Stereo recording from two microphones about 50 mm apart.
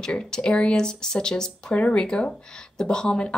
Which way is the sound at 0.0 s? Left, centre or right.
Centre.